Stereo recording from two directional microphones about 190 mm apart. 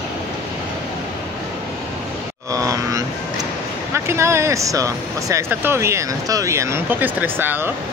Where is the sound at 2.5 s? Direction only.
15° right (ahead or behind).